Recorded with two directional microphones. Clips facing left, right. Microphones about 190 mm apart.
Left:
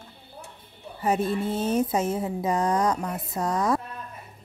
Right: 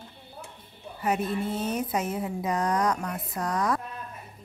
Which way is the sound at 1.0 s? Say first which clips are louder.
Left 3 dB; 30° left (ahead or behind).